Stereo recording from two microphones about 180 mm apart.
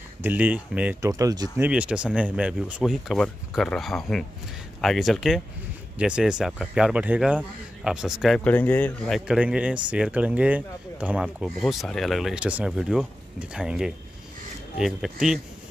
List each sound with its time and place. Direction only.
0.2 s speech: 10° right (ahead or behind)
1.1 s speech: 20° right (ahead or behind)
1.7 s a man's voice: 5° right (ahead or behind)